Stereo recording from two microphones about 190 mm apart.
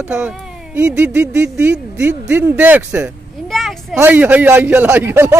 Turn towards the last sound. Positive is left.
turn(degrees=-15)  # may be behind; listen again after turning